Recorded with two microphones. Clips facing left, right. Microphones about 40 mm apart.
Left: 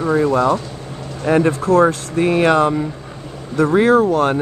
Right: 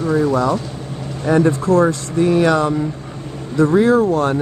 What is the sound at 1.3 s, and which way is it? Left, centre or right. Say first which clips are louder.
Speech: even; left.